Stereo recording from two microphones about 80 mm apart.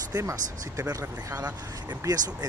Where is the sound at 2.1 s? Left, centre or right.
Right.